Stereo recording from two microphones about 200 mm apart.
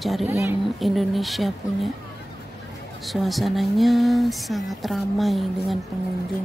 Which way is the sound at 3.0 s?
Centre (ahead or behind).